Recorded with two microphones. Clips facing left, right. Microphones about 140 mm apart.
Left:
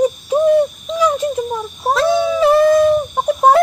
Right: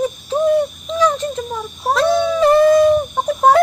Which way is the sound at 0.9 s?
10° left (ahead or behind).